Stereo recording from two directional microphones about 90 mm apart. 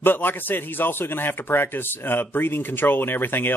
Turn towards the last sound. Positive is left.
turn(degrees=25)  # may be behind; listen again after turning